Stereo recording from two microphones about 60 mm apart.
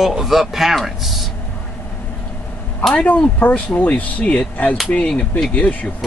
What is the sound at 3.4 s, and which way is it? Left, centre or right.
Speech, left.